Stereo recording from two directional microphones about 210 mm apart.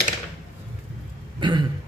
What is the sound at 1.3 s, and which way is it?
Throat clearing, 20° right (ahead or behind).